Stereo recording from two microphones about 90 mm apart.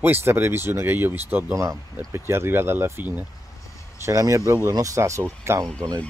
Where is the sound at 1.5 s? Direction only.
35° right (ahead or behind); by 3.3 s 20° right (ahead or behind).